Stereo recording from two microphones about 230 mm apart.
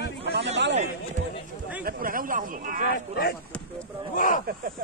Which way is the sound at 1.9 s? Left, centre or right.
Right.